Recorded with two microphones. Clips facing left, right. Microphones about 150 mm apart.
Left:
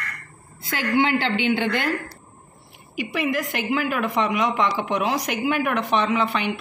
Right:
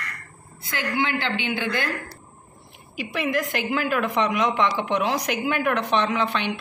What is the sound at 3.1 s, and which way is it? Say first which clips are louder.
A woman's voice: even; 5° left (ahead or behind).